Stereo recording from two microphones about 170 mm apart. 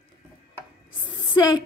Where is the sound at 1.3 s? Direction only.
25° left (ahead or behind).